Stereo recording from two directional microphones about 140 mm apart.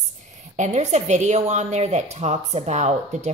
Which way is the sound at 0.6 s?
55° right (ahead or behind).